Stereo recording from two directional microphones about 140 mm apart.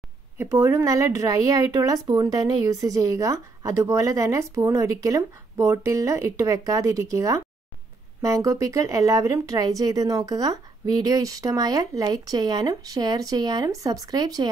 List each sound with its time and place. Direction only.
0.4 s speech: 20° right (ahead or behind)